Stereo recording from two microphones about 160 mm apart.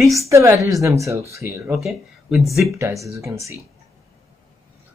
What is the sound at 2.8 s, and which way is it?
Speech, 20° right (ahead or behind).